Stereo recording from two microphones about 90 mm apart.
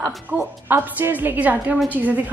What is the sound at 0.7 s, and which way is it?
A woman's voice, 20° right (ahead or behind).